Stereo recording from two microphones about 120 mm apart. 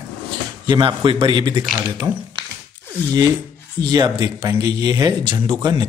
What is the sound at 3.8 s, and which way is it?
Speech, 35° right (ahead or behind).